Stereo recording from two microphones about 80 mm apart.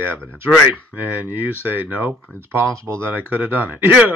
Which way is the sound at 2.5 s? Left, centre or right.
Right.